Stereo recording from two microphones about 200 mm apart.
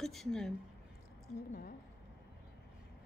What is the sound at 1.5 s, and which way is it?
Speech, 50° left (ahead or behind).